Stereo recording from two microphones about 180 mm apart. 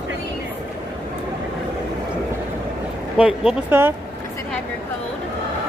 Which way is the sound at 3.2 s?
5° right (ahead or behind).